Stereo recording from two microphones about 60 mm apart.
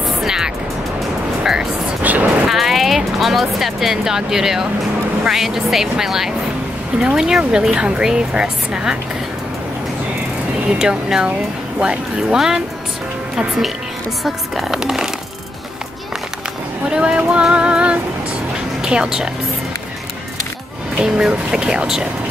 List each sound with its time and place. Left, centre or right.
0.2 s music: centre
1.4 s vehicle: centre
2.1 s vehicle: right
2.4 s speech: centre
10.8 s speech: centre
14.2 s speech: centre
16.9 s speech: centre
17.3 s music: centre
18.8 s speech: centre
21.0 s speech: centre